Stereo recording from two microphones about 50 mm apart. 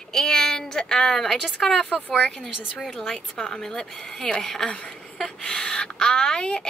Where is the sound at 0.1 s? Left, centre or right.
Centre.